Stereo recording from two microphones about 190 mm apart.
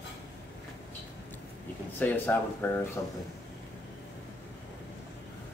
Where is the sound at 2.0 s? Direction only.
10° left (ahead or behind).